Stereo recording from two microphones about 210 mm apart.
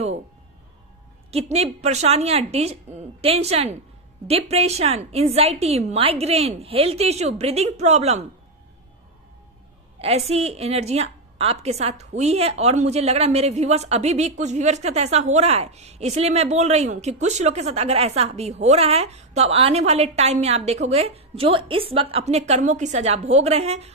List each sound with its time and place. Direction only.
1.3 s a woman's voice: 30° right (ahead or behind)
9.9 s a woman's voice: 30° right (ahead or behind)